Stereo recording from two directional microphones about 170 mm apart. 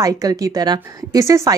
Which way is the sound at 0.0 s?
20° right (ahead or behind).